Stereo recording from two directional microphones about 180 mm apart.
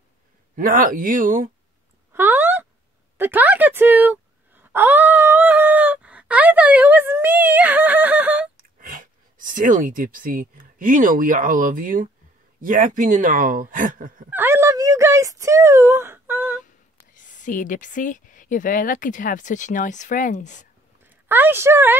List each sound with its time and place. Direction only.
0.6 s speech: 50° right (ahead or behind)
2.1 s a sound: 10° right (ahead or behind)
8.7 s speech: 50° right (ahead or behind)
14.3 s speech: 15° right (ahead or behind)
17.1 s speech: 45° left (ahead or behind)
21.0 s speech: 10° right (ahead or behind)